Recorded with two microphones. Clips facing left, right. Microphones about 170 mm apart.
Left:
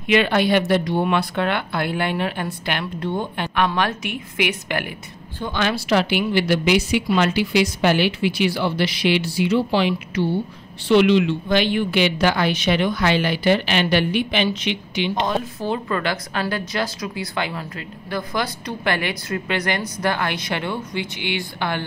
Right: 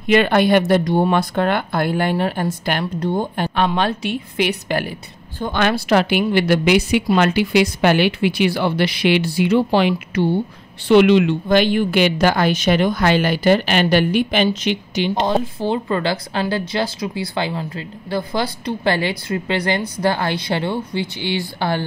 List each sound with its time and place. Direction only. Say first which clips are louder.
0.0 s a woman's voice: right 3 dB; 45° right (ahead or behind)
5.4 s a woman's voice: right 4 dB; 55° right (ahead or behind); by 21.8 s 35° right (ahead or behind)